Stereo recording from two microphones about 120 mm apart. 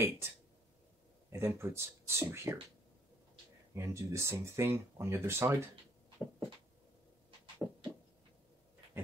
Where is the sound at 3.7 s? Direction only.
25° right (ahead or behind).